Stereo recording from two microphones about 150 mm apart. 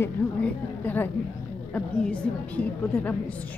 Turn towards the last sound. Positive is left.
turn(degrees=10)  # may be behind; listen again after turning